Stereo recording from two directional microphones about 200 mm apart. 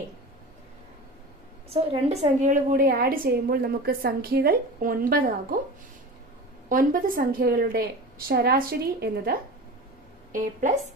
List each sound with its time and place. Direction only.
1.7 s a woman's voice: 30° right (ahead or behind); by 5.6 s 45° right (ahead or behind)
6.7 s a woman's voice: 45° right (ahead or behind)
10.3 s a woman's voice: 40° right (ahead or behind)